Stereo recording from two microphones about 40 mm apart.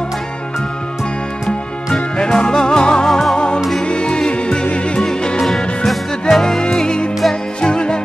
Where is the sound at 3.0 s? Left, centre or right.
Centre.